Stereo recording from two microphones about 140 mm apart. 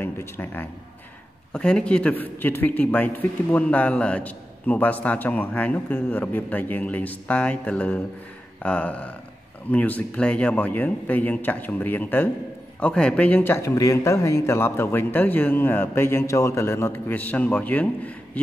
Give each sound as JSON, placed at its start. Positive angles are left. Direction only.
{"t": 0.0, "sound": "speech", "side_deg": 15}